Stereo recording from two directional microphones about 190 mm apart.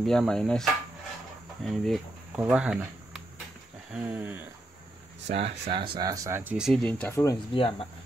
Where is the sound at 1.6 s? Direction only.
Centre (ahead or behind).